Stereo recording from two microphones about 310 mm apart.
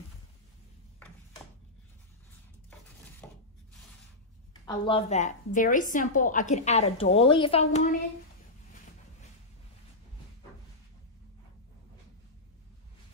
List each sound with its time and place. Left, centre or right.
3.2 s rub: centre
4.6 s a woman's voice: centre